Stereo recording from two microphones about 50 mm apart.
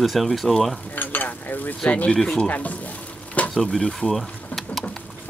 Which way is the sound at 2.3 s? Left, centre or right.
Left.